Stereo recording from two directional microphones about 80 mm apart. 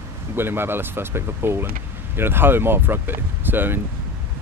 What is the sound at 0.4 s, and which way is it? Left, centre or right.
Speech, right.